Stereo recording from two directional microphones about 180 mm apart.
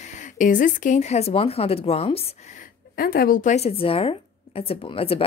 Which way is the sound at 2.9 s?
55° left (ahead or behind).